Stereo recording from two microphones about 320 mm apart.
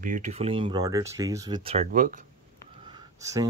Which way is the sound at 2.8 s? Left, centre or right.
Centre.